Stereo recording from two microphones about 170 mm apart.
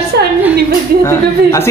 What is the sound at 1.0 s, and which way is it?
Speech, 15° left (ahead or behind).